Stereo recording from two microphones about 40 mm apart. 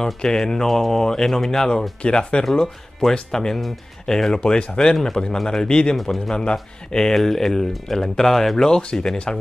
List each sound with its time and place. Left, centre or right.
0.0 s speech: centre
2.6 s speech: centre
4.4 s speech: left
4.9 s speech: centre